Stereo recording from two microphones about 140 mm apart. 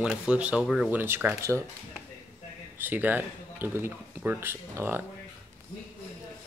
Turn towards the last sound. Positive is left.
turn(degrees=-15)  # may be behind; listen again after turning